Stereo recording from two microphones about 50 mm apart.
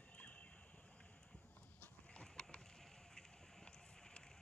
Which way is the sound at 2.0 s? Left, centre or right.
Centre.